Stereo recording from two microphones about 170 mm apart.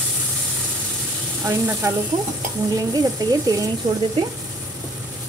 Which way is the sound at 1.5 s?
10° right (ahead or behind).